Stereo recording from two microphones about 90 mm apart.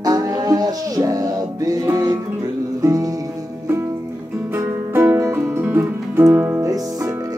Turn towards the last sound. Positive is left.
turn(degrees=-30)  # may be behind; listen again after turning